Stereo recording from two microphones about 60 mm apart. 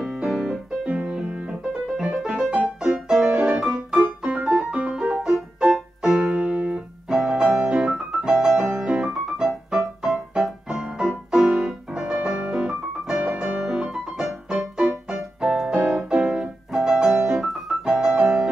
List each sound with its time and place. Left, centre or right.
0.0 s piano: centre
1.7 s music: centre
2.8 s music: centre
3.5 s piano: centre
4.5 s keyboard: centre
4.7 s music: centre
5.2 s keyboard: centre
7.2 s music: centre
12.4 s piano: centre
15.5 s music: centre
15.8 s piano: centre